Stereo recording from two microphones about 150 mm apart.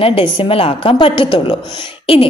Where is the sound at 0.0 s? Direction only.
35° left (ahead or behind).